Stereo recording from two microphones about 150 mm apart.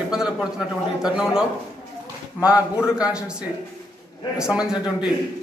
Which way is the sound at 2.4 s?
25° left (ahead or behind).